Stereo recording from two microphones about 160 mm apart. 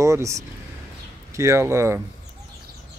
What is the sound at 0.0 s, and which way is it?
Speech, 20° right (ahead or behind).